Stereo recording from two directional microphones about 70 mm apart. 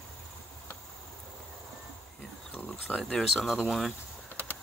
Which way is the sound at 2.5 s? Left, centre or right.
Centre.